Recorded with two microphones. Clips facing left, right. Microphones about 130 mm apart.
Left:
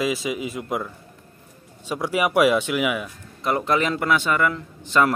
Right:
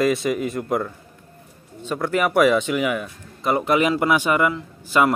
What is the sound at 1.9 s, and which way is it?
A man's voice, 10° left (ahead or behind).